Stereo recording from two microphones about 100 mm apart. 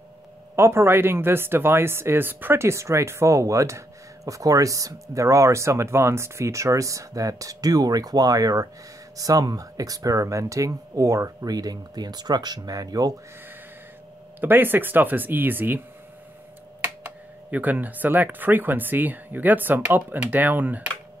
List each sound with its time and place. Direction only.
0.6 s speech: 25° right (ahead or behind)
14.4 s speech: 20° right (ahead or behind)
16.8 s speech: 20° right (ahead or behind)